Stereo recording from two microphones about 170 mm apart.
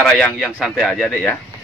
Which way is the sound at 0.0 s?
Centre (ahead or behind).